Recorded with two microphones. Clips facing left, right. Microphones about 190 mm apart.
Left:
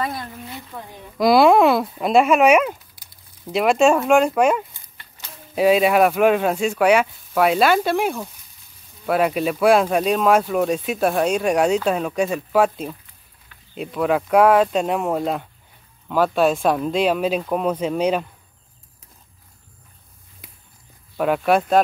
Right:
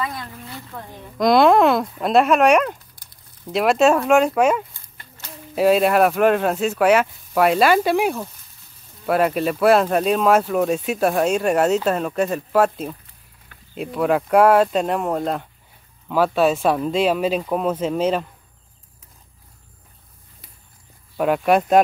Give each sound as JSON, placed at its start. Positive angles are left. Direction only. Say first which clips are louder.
{"t": 0.1, "sound": "a sound", "louder": "left 2 dB", "side_deg": 20}
{"t": 0.7, "sound": "speech", "louder": "even", "side_deg": 5}
{"t": 13.7, "sound": "speech", "louder": "right 1 dB", "side_deg": 0}
{"t": 21.2, "sound": "speech", "louder": "right 1 dB", "side_deg": 0}